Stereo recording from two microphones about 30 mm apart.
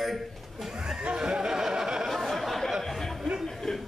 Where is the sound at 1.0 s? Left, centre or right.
Right.